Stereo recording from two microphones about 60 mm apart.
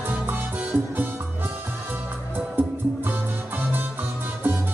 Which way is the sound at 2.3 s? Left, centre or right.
Right.